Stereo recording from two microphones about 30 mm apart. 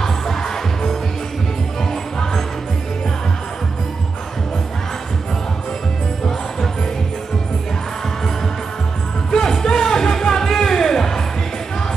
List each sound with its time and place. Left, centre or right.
0.0 s music: centre
9.4 s music: centre